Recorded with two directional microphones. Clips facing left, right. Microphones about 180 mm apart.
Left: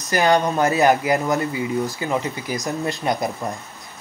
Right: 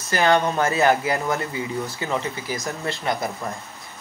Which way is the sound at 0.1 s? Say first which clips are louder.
Left 1 dB; 15° left (ahead or behind).